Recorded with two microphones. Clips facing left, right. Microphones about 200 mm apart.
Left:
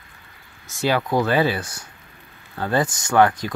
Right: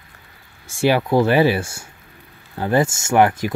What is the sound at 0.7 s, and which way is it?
Speech, 10° right (ahead or behind).